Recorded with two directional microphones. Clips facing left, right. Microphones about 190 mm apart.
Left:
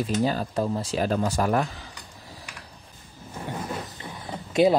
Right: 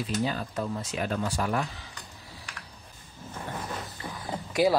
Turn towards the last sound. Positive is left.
turn(degrees=20)  # may be behind; listen again after turning